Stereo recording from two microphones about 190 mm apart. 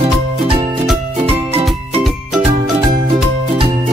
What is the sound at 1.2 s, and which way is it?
Music, 35° right (ahead or behind).